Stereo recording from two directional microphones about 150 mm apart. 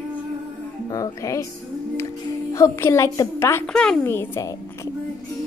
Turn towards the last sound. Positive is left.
turn(degrees=15)  # may be behind; listen again after turning